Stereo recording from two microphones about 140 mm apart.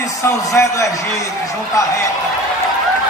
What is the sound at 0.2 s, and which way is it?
Speech, 20° left (ahead or behind).